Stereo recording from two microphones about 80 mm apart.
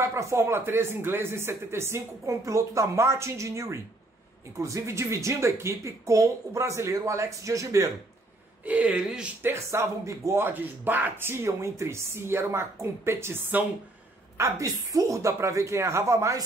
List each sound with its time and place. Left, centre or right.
0.0 s speech: right
8.6 s speech: centre
9.4 s speech: right
10.4 s speech: right
14.3 s speech: right